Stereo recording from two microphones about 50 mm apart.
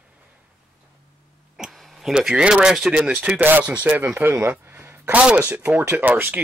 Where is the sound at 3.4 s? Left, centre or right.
Right.